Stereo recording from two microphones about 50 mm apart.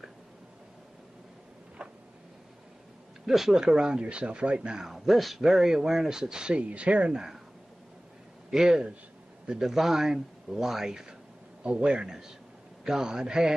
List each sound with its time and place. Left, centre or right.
1.8 s a sound: right
3.3 s speech: centre
4.8 s speech: centre; by 7.2 s right
8.5 s a man's voice: centre